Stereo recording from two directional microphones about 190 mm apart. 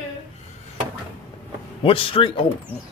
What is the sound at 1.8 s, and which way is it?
Speech, 30° left (ahead or behind).